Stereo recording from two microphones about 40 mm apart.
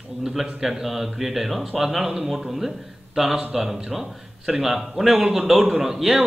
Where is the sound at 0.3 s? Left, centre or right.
Centre.